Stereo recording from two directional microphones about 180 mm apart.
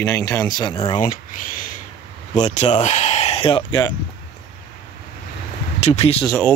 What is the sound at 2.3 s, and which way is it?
Speech, 40° left (ahead or behind).